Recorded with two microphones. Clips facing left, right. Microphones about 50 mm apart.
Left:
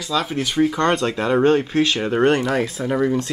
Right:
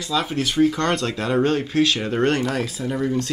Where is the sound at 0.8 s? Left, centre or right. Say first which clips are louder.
Left 3 dB; left.